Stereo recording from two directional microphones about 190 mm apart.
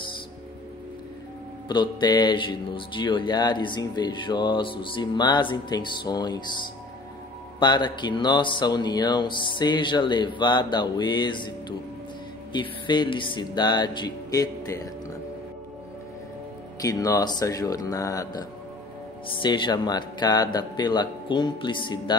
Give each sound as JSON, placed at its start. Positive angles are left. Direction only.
{"t": 1.7, "sound": "speech", "side_deg": 25}
{"t": 12.5, "sound": "speech", "side_deg": 25}
{"t": 16.8, "sound": "speech", "side_deg": 20}